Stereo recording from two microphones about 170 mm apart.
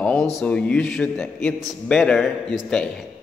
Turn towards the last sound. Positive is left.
turn(degrees=5)  # may be behind; listen again after turning